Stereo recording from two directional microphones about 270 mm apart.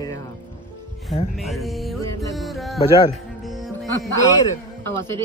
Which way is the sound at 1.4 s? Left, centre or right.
Centre.